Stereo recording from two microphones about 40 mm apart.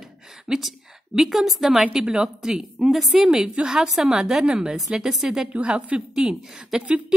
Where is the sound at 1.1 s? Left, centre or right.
Centre.